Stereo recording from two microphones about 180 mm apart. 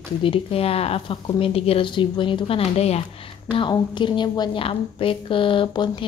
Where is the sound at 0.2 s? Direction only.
30° left (ahead or behind).